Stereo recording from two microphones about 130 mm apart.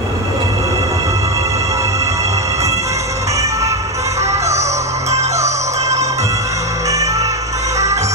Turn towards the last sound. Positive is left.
turn(degrees=-25)  # may be behind; listen again after turning